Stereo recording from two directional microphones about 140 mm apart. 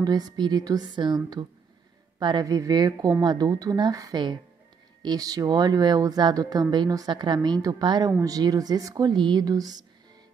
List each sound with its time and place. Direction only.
0.0 s speech: 30° right (ahead or behind)